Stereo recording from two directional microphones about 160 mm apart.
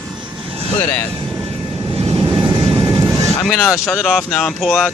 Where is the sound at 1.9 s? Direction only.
35° right (ahead or behind); by 3.3 s 20° right (ahead or behind).